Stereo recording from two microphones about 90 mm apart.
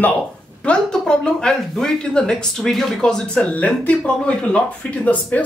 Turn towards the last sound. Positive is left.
turn(degrees=15)  # may be behind; listen again after turning